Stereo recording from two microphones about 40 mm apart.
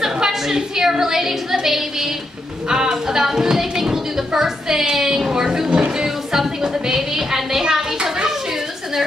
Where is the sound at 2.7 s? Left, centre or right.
Centre.